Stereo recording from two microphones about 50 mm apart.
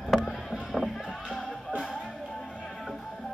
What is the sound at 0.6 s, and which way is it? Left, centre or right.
Music, centre.